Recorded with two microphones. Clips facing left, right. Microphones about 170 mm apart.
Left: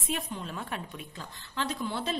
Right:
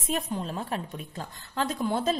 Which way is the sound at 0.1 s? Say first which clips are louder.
Right 5 dB; 40° right (ahead or behind).